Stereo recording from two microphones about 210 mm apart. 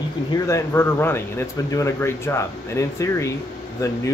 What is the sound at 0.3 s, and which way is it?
Speech, 15° left (ahead or behind).